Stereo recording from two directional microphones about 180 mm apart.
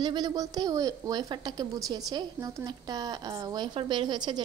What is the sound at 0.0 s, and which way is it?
A woman's voice, 25° right (ahead or behind).